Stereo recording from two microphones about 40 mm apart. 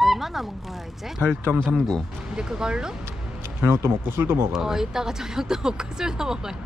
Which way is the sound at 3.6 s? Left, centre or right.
Right.